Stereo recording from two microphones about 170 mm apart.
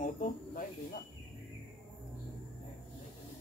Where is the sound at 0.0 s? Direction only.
50° left (ahead or behind).